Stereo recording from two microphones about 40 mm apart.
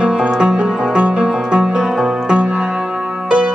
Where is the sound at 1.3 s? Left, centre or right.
Centre.